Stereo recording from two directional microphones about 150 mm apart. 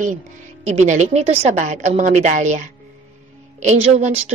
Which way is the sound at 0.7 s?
50° right (ahead or behind).